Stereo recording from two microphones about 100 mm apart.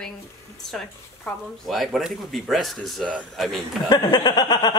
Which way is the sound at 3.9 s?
45° left (ahead or behind).